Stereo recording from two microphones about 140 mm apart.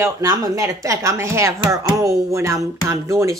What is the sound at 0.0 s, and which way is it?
Speech, 25° right (ahead or behind).